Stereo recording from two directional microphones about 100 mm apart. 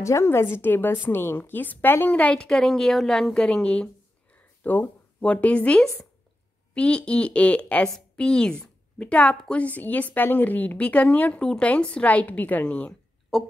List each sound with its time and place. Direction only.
0.0 s a woman's voice: 25° left (ahead or behind); by 13.4 s 10° left (ahead or behind)